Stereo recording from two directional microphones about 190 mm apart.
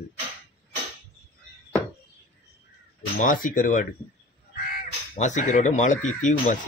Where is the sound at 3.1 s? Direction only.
45° left (ahead or behind).